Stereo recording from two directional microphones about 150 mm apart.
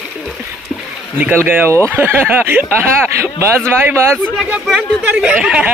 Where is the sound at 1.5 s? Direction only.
15° right (ahead or behind).